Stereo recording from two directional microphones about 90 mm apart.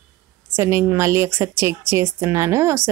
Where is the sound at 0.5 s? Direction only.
30° right (ahead or behind).